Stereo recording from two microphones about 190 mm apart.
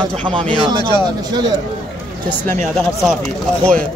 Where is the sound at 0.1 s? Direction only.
5° left (ahead or behind).